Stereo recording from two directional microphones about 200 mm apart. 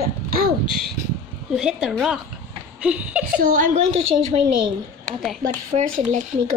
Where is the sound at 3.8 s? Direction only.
80° right.